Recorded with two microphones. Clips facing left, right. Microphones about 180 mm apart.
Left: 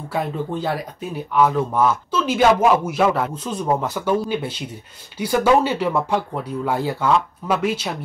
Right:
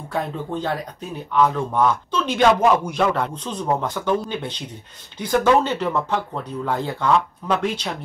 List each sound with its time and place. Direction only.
0.1 s speech: 10° left (ahead or behind)